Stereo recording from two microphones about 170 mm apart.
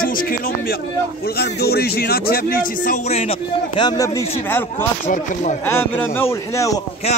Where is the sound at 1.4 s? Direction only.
70° left (ahead or behind); by 3.2 s 50° left (ahead or behind).